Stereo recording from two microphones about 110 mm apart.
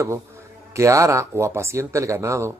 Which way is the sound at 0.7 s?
30° right (ahead or behind).